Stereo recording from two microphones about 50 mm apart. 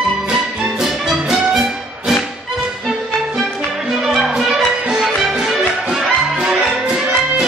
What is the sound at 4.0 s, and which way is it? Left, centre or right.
Music, centre.